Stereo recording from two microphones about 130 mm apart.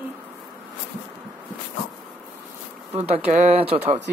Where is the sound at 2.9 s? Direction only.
55° right (ahead or behind).